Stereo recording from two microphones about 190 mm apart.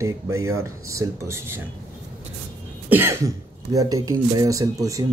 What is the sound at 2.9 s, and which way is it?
Speech, 15° right (ahead or behind).